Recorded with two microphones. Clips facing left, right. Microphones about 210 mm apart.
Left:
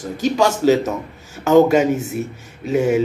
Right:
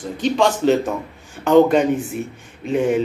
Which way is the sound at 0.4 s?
5° left (ahead or behind).